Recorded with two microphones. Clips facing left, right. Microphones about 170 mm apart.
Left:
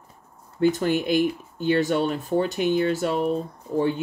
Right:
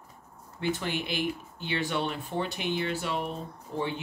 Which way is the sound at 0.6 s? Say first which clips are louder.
Left 10 dB; 45° left (ahead or behind).